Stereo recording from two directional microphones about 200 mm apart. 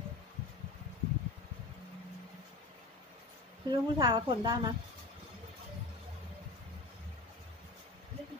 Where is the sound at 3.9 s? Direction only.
20° right (ahead or behind).